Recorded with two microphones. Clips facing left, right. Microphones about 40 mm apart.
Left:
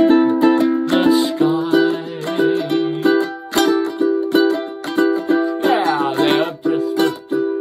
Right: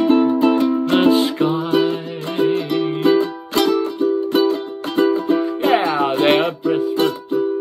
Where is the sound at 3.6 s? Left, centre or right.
Left.